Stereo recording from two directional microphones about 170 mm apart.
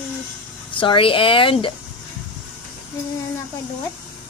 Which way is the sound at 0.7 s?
30° left (ahead or behind).